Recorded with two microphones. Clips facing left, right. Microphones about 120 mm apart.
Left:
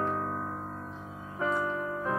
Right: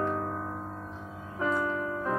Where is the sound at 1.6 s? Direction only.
15° left (ahead or behind).